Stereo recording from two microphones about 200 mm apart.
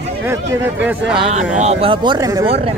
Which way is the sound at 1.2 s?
35° right (ahead or behind).